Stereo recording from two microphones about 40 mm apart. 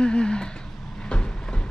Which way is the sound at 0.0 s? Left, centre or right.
Left.